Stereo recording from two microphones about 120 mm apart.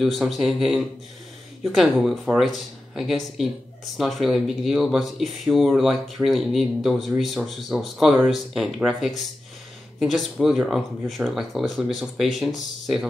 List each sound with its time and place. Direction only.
0.0 s speech: centre (ahead or behind)